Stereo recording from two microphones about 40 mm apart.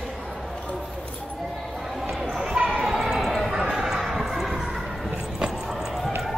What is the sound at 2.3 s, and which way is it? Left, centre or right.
Basketball bounce, centre.